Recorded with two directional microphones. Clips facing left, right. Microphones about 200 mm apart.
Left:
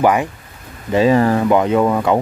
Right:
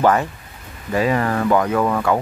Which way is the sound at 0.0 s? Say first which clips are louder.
Left 2 dB; 15° left (ahead or behind).